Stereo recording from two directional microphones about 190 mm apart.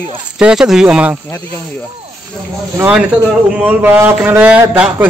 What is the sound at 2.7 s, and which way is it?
A man's voice, 5° right (ahead or behind).